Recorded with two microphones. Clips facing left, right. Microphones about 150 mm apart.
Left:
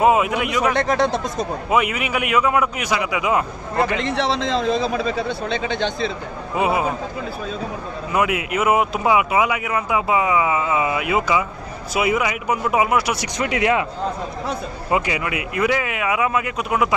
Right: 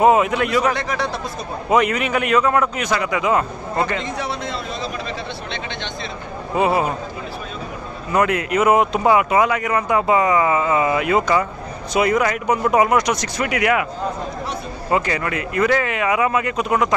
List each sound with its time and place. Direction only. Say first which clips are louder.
0.0 s a man's voice: right 2 dB; 10° left (ahead or behind)
0.7 s speech: left 5 dB; 50° left (ahead or behind)
1.7 s a man's voice: right 4 dB; 10° left (ahead or behind)
4.0 s a man's voice: left 5 dB; 90° left
6.5 s a man's voice: right 2 dB; 5° left (ahead or behind)
8.1 s speech: right 3 dB; 5° left (ahead or behind)
13.4 s a man's voice: left 1 dB; 25° left (ahead or behind)
14.9 s speech: right 1 dB; 10° left (ahead or behind)